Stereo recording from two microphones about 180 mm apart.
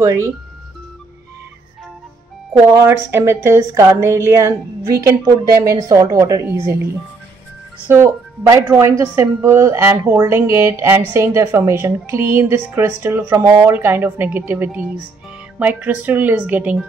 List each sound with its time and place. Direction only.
0.0 s a woman's voice: 15° right (ahead or behind)
2.7 s a woman's voice: 15° right (ahead or behind)
7.9 s a woman's voice: 15° right (ahead or behind)